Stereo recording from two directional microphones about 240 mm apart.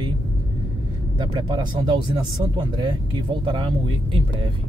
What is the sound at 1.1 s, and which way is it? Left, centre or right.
Speech, centre.